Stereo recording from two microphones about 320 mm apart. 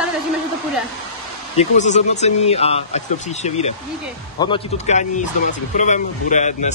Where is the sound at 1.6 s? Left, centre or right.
Left.